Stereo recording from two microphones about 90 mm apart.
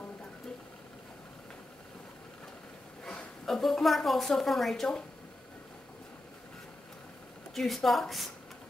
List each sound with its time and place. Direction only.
3.1 s a woman's voice: 10° left (ahead or behind)
7.5 s a woman's voice: centre (ahead or behind)